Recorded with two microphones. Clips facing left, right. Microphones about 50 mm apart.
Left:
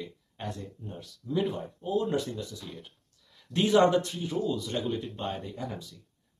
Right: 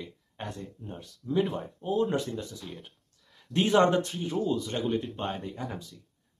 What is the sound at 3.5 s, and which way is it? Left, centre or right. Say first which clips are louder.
Speech: even; right.